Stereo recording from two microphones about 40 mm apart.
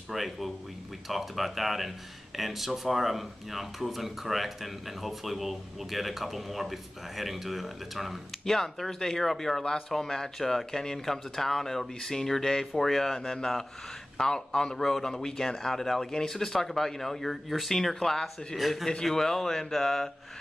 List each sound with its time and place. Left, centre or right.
0.1 s speech: centre
8.5 s speech: centre
18.6 s speech: centre
18.9 s speech: centre